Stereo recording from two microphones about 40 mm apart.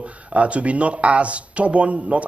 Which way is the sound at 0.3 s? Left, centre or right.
Right.